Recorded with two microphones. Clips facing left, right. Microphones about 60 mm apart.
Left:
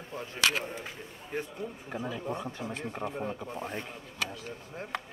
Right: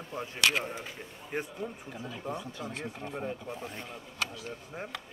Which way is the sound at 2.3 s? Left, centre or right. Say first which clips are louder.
Left 2 dB; left.